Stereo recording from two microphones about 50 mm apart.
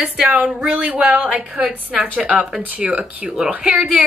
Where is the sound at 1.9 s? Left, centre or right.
Right.